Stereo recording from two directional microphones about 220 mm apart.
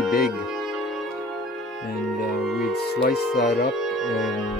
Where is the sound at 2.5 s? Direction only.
Centre (ahead or behind).